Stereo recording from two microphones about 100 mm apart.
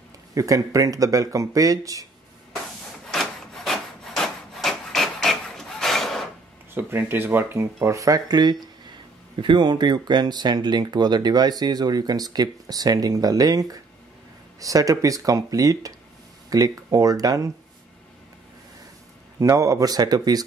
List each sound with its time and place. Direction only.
0.3 s speech: 35° right (ahead or behind)
3.1 s rub: 5° left (ahead or behind)
6.7 s speech: 20° right (ahead or behind)
19.4 s speech: 35° right (ahead or behind)